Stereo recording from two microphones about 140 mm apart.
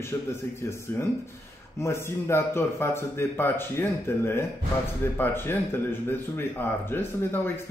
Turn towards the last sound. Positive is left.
turn(degrees=15)  # may be behind; listen again after turning